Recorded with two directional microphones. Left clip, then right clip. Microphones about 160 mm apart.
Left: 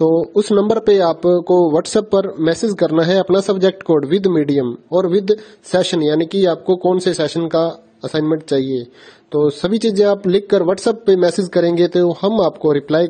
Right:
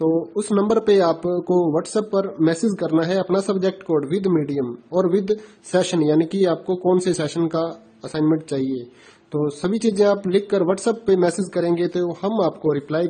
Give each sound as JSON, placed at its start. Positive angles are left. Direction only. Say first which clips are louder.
{"t": 0.0, "sound": "a man's voice", "louder": "left 7 dB", "side_deg": 40}